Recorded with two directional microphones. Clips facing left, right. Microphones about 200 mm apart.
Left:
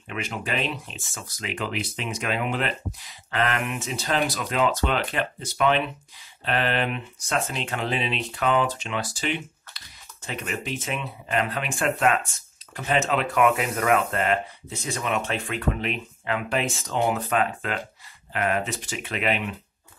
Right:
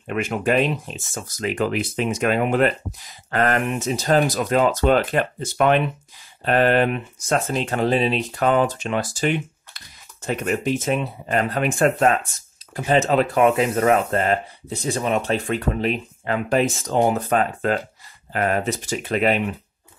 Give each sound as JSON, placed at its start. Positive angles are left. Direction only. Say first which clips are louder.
{"t": 0.0, "sound": "speech", "louder": "right 9 dB", "side_deg": -50}